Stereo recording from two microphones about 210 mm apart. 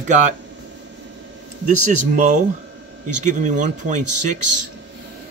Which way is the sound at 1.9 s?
40° right (ahead or behind).